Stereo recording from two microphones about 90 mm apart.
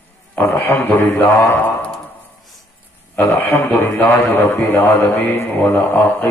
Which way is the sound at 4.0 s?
20° left (ahead or behind).